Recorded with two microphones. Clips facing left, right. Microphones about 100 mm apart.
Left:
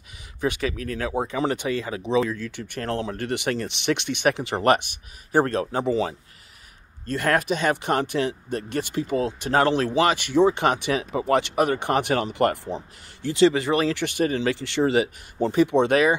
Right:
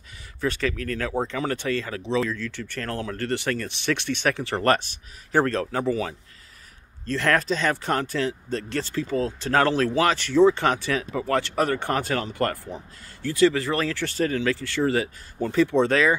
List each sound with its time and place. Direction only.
0.4 s speech: 15° left (ahead or behind)
7.1 s speech: 15° left (ahead or behind)